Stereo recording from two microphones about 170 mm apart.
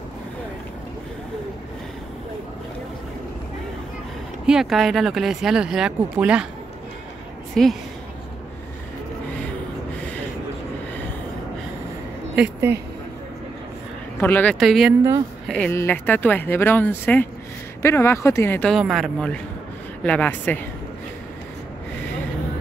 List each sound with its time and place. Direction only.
4.5 s speech: centre (ahead or behind)
7.6 s speech: 5° left (ahead or behind)
14.2 s speech: 10° left (ahead or behind)
18.8 s speech: centre (ahead or behind)